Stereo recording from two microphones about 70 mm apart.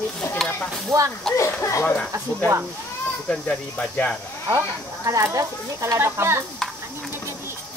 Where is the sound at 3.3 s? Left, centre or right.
Centre.